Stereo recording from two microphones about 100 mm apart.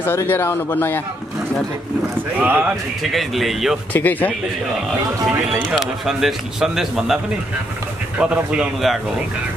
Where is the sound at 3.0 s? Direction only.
Centre (ahead or behind).